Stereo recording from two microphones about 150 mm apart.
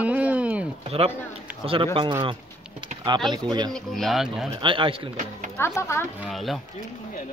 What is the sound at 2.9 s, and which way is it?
Bird, 55° right (ahead or behind).